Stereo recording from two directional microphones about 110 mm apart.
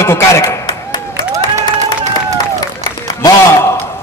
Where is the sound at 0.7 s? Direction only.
40° left (ahead or behind).